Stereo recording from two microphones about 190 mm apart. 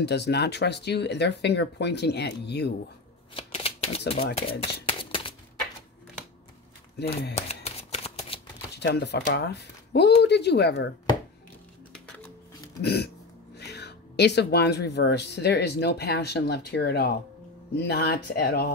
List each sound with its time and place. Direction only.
0.0 s speech: 60° left (ahead or behind)
3.3 s typewriter: 30° left (ahead or behind)
4.4 s shuffling cards: 30° left (ahead or behind)
7.3 s shuffling cards: 35° left (ahead or behind)
8.7 s speech: 60° left (ahead or behind)
12.8 s speech: 60° left (ahead or behind)